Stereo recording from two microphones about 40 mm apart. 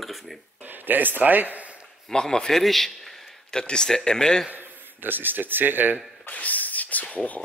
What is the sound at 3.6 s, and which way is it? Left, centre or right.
Speech, left.